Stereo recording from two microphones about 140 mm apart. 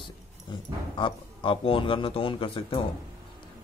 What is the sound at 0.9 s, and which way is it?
Speech, 35° left (ahead or behind).